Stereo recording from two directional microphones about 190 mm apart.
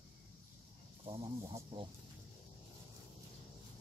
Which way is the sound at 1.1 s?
25° right (ahead or behind).